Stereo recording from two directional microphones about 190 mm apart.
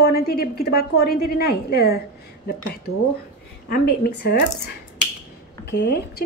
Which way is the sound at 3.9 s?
60° left (ahead or behind).